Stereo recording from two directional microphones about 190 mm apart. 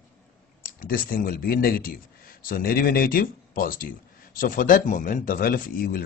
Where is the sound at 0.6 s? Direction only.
50° left (ahead or behind).